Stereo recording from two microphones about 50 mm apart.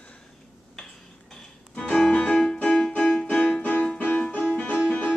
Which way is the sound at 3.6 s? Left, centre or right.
Left.